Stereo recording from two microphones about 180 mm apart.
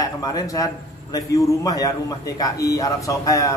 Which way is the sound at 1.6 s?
20° left (ahead or behind).